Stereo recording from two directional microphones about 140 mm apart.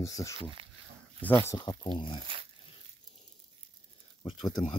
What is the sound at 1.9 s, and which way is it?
Speech, 35° left (ahead or behind).